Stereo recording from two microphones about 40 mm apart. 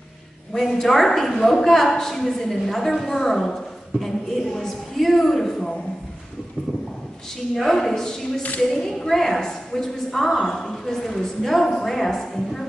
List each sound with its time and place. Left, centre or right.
0.5 s a woman's voice: centre
7.6 s a woman's voice: centre